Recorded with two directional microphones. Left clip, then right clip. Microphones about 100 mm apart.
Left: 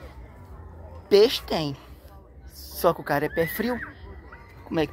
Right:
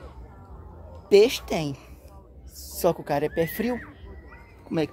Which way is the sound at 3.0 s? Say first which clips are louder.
Even; 25° right (ahead or behind).